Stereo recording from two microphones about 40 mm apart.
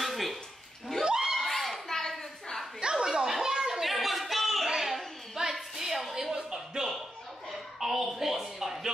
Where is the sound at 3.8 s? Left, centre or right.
Centre.